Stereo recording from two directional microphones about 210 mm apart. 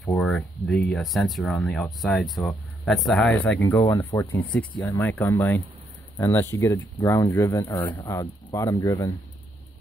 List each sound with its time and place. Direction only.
0.0 s speech: 5° left (ahead or behind)
3.8 s speech: 15° left (ahead or behind)